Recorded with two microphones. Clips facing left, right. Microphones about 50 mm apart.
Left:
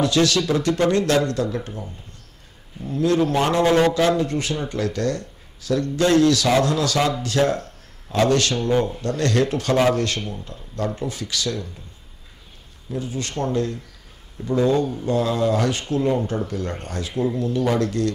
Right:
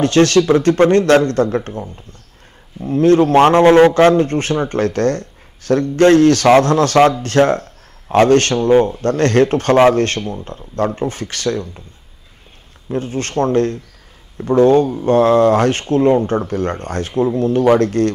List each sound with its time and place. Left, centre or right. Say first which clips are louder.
0.0 s a man's voice: right 7 dB; right
12.9 s a man's voice: right 8 dB; right